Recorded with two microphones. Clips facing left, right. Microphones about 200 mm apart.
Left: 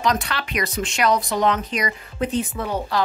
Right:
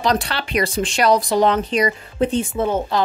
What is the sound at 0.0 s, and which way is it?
Speech, 35° right (ahead or behind).